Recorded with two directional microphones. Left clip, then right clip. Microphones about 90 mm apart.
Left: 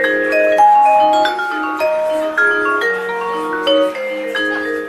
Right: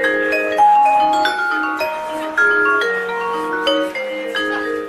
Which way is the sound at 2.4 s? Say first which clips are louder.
Right 3 dB; 20° right (ahead or behind).